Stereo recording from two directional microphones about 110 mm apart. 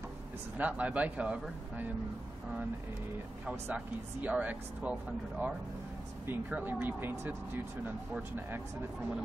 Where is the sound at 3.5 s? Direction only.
15° right (ahead or behind).